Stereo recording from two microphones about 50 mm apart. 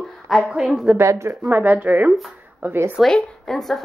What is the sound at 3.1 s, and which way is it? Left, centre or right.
Speech, centre.